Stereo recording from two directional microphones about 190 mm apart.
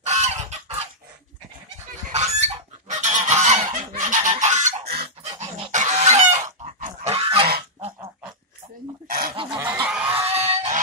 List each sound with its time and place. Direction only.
0.0 s chicken: 35° right (ahead or behind)
2.0 s goose: 35° right (ahead or behind)
5.7 s fowl: 40° right (ahead or behind)
7.0 s goose: 30° right (ahead or behind)
9.0 s goose: 50° right (ahead or behind)
9.6 s goose: 10° right (ahead or behind)
10.2 s goose: 35° right (ahead or behind)